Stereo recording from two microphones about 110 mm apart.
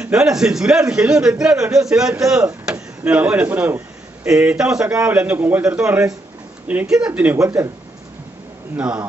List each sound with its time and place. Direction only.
0.0 s a man's voice: 5° right (ahead or behind)
7.3 s speech: 25° right (ahead or behind)
8.7 s a man's voice: 10° right (ahead or behind)